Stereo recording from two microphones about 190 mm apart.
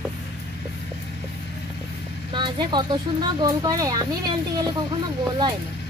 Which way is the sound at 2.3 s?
25° right (ahead or behind).